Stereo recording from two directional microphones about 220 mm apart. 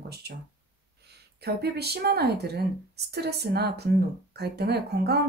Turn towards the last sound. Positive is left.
turn(degrees=-50)  # may be behind; listen again after turning